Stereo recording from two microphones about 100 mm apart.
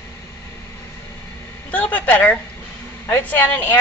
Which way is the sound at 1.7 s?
15° left (ahead or behind).